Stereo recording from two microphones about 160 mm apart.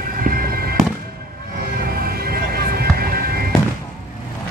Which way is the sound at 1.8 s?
70° right (ahead or behind).